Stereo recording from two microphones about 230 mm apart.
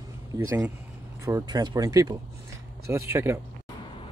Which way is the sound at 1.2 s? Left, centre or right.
Centre.